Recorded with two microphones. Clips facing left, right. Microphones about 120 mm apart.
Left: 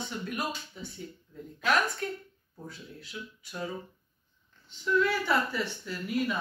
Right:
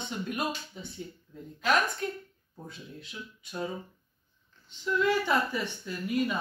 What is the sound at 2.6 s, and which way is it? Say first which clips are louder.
Speech: even; 20° right (ahead or behind).